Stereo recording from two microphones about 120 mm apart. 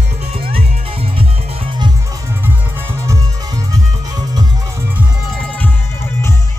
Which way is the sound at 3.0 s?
30° right (ahead or behind).